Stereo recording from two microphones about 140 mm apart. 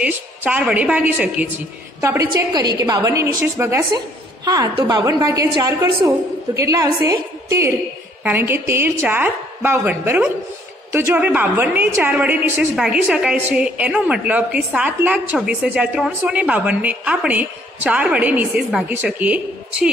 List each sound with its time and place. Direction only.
0.0 s a woman's voice: 10° right (ahead or behind)
2.0 s a woman's voice: 20° right (ahead or behind)
8.2 s a woman's voice: 15° right (ahead or behind)